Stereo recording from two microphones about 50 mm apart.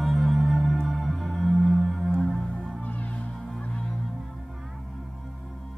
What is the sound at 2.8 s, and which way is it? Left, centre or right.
Music, left.